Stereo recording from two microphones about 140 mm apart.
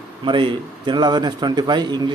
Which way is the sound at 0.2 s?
35° right (ahead or behind).